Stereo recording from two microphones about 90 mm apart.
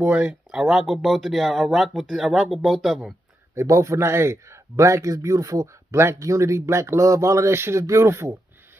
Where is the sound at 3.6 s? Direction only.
35° right (ahead or behind).